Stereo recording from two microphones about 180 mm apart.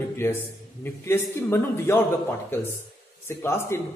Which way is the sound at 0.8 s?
15° left (ahead or behind).